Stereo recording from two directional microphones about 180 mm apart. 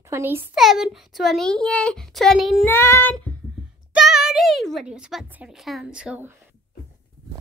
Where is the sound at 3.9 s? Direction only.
5° right (ahead or behind).